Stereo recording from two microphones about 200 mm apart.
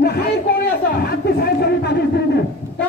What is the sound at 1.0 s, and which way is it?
A man's voice, 50° left (ahead or behind).